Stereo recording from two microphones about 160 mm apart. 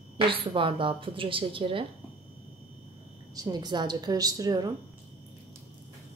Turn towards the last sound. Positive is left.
turn(degrees=-25)  # may be behind; listen again after turning